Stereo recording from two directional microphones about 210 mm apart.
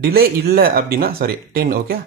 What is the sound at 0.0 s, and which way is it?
Speech, 45° right (ahead or behind).